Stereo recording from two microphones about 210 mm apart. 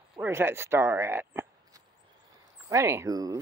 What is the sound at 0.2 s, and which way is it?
Speech, 10° right (ahead or behind).